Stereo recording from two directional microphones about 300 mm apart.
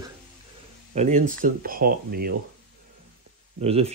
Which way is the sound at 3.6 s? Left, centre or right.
Centre.